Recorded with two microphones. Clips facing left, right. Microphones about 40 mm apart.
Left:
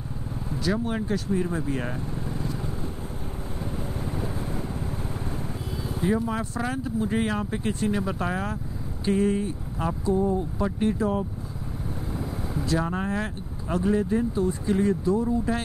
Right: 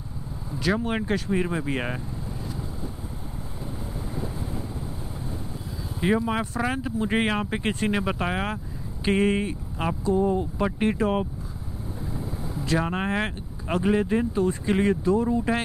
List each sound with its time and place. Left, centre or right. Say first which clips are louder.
0.6 s speech: right 2 dB; right
5.9 s speech: right 2 dB; right
6.5 s speech: right 2 dB; right
6.8 s speech: right 1 dB; right
8.2 s speech: right 1 dB; right
9.0 s speech: right 1 dB; right
10.1 s speech: right 2 dB; right
10.6 s speech: right 1 dB; right
12.7 s speech: right 2 dB; right
14.3 s speech: right 1 dB; right